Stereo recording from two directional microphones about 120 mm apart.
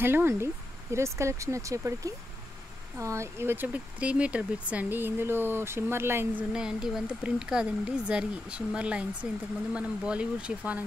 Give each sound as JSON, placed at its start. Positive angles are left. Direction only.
{"t": 0.0, "sound": "speech", "side_deg": -20}
{"t": 6.5, "sound": "speech", "side_deg": -5}